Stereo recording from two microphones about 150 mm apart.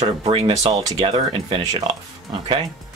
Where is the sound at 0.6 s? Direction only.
25° right (ahead or behind).